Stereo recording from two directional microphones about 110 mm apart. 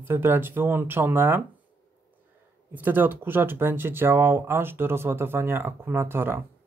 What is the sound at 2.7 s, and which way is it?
Speech, 15° right (ahead or behind).